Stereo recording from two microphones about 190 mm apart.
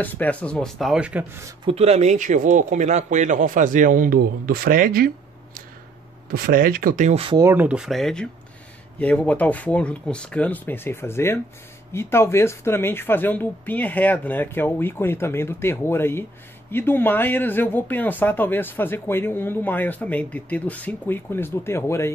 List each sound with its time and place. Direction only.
0.0 s speech: 10° left (ahead or behind); by 1.5 s 10° right (ahead or behind)
1.6 s speech: 30° right (ahead or behind); by 5.1 s 50° right (ahead or behind)
6.3 s speech: 50° right (ahead or behind); by 7.3 s 35° right (ahead or behind)
7.3 s speech: 10° right (ahead or behind); by 22.1 s 15° left (ahead or behind)